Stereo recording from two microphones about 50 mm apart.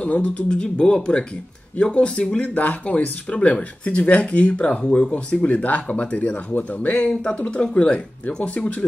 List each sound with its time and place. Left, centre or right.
0.0 s speech: left
7.5 s speech: centre